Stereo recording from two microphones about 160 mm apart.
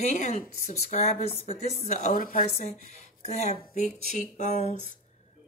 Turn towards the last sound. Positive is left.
turn(degrees=45)  # may be behind; listen again after turning